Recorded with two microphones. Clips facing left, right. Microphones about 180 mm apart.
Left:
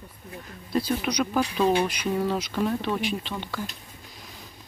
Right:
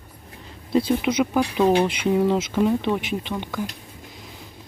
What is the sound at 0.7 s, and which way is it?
Speech, 20° right (ahead or behind).